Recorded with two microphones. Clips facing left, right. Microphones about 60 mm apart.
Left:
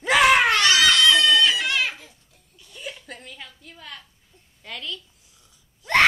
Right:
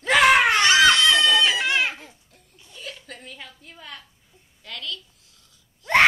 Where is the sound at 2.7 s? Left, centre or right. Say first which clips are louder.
Left 2 dB; centre.